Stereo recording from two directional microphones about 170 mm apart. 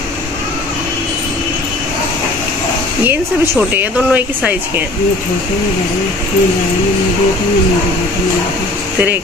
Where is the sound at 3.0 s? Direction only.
10° right (ahead or behind).